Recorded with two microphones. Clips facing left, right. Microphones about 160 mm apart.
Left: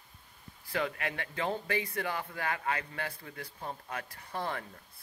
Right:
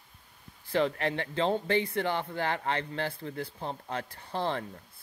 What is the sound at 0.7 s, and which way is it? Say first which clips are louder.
Speech: right 6 dB; 30° right (ahead or behind).